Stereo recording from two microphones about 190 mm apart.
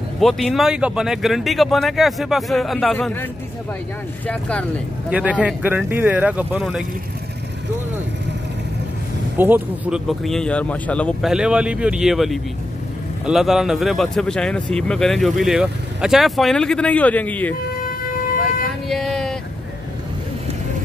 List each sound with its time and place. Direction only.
0.2 s speech: centre (ahead or behind)
4.3 s speech: 5° left (ahead or behind)
5.1 s speech: 5° right (ahead or behind)
9.4 s speech: 5° right (ahead or behind)
17.8 s vehicle: 50° left (ahead or behind)
18.9 s a sound: centre (ahead or behind)